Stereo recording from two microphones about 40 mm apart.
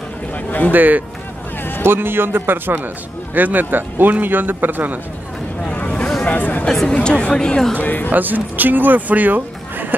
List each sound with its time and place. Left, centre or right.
0.7 s a man's voice: right
1.9 s a man's voice: right
5.9 s boat: left
6.3 s speech: left
6.9 s a woman's voice: left
7.8 s speech: left
8.1 s speech: right